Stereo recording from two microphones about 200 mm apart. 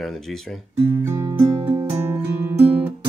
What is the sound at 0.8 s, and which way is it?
Speech, 15° right (ahead or behind).